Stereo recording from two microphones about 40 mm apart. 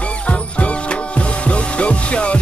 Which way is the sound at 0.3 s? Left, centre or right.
Left.